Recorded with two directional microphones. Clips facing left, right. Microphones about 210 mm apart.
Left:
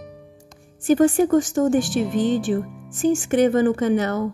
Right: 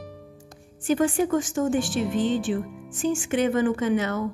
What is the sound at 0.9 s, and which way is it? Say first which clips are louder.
A woman's voice: left 6 dB; 40° left (ahead or behind).